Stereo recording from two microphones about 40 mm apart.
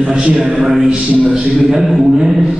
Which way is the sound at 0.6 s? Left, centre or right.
Centre.